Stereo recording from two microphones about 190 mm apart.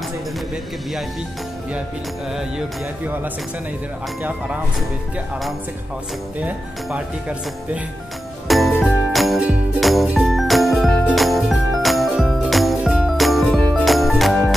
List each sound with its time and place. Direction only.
4.2 s speech: 5° right (ahead or behind)
6.4 s speech: 5° right (ahead or behind)
8.5 s music: centre (ahead or behind)